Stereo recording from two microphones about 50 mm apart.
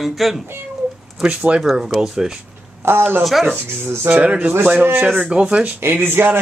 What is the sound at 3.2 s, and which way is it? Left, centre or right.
Speech, centre.